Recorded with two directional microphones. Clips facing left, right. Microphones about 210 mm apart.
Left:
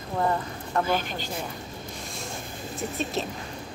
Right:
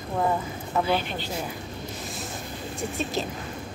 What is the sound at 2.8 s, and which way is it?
Speech, centre (ahead or behind).